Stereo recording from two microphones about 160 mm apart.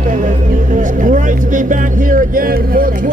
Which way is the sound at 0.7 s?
50° right (ahead or behind).